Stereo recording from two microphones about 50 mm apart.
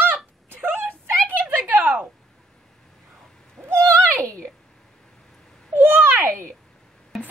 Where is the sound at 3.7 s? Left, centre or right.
Right.